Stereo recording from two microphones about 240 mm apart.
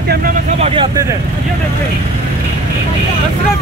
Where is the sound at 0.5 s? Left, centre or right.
Right.